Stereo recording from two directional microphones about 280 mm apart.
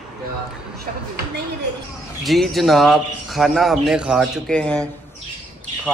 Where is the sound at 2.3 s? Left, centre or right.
Centre.